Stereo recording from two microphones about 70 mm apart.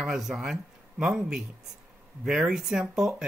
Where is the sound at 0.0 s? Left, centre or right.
Centre.